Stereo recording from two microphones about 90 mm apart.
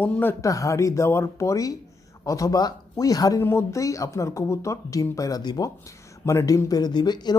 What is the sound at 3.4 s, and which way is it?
Speech, 30° left (ahead or behind).